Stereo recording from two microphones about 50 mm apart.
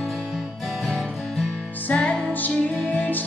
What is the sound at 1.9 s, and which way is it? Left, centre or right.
Music, left.